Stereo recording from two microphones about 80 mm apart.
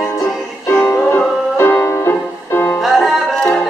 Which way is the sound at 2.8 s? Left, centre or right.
Centre.